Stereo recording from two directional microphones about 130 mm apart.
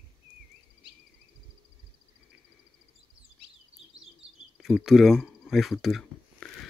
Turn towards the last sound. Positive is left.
turn(degrees=5)  # may be behind; listen again after turning